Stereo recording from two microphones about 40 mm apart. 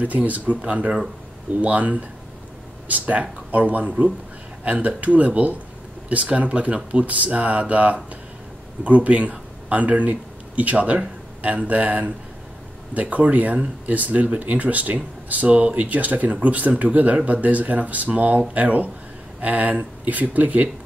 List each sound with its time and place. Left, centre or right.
0.0 s speech: right